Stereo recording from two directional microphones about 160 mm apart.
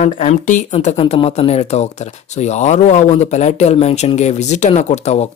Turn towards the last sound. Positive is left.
turn(degrees=45)  # may be behind; listen again after turning